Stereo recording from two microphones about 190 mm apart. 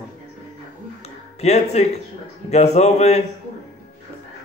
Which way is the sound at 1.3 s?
35° left (ahead or behind).